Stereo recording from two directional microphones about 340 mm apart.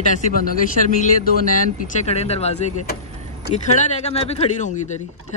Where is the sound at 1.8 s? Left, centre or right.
Centre.